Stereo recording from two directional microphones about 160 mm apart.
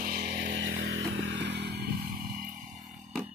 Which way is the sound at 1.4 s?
90° right.